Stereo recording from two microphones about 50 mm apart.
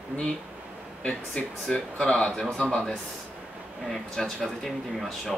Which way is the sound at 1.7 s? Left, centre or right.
Centre.